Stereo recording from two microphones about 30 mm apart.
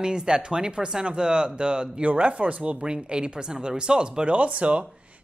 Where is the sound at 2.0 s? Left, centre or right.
Right.